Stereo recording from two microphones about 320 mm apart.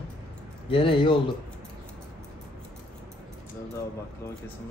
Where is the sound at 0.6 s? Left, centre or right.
Centre.